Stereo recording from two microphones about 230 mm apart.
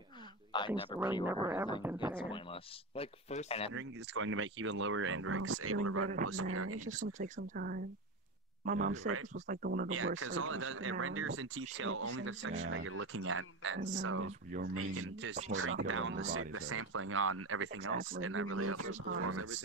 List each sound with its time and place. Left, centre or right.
0.5 s a sound: centre
1.2 s speech: centre
2.2 s speech: left
3.7 s speech: right
6.2 s speech: right
7.3 s speech: right
9.8 s speech: right
14.2 s speech: right
14.7 s speech: right